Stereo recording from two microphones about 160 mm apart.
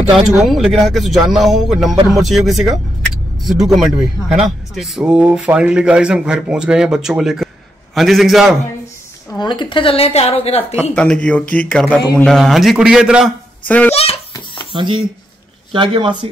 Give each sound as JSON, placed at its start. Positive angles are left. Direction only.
{"t": 0.4, "sound": "speech", "side_deg": 0}
{"t": 9.3, "sound": "a woman's voice", "side_deg": 25}
{"t": 11.0, "sound": "speech", "side_deg": 5}
{"t": 13.7, "sound": "speech", "side_deg": 10}
{"t": 13.9, "sound": "a sound", "side_deg": 35}
{"t": 14.7, "sound": "speech", "side_deg": -30}